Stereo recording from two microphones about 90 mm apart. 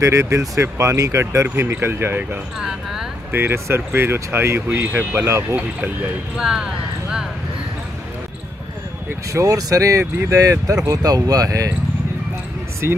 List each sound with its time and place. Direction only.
0.0 s speech: 30° right (ahead or behind)
2.6 s speech: 5° right (ahead or behind)
3.3 s speech: 25° right (ahead or behind)
6.3 s speech: 5° right (ahead or behind)
9.3 s speech: 40° right (ahead or behind)
12.8 s speech: 25° right (ahead or behind)